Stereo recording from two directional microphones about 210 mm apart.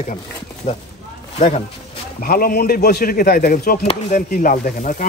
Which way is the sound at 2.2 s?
45° left (ahead or behind).